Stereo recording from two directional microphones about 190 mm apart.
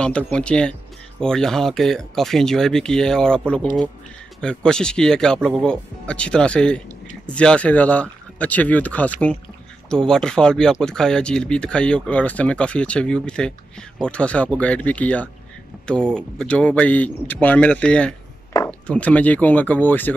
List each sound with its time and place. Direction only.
0.3 s speech: 5° left (ahead or behind)